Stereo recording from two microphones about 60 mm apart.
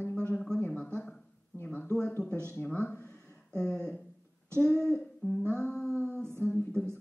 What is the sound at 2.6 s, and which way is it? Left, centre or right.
Speech, left.